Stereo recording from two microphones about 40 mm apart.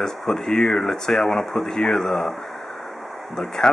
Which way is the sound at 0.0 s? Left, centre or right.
Centre.